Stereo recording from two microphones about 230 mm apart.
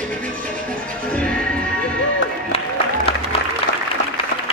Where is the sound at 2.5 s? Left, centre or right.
Left.